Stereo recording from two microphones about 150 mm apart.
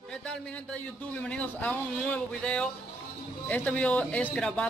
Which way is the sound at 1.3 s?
10° left (ahead or behind).